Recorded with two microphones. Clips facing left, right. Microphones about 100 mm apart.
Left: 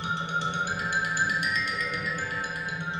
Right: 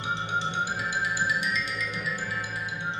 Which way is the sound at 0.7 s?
55° left (ahead or behind).